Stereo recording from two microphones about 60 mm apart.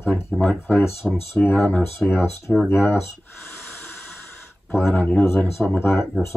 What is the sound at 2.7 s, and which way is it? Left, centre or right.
Speech, left.